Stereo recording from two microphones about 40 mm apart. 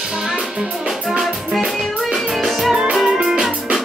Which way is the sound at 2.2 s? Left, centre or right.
Centre.